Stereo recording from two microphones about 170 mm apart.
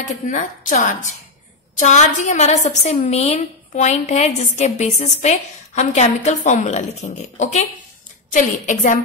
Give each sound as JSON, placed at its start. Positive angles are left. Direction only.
{"t": 0.0, "sound": "a woman's voice", "side_deg": 50}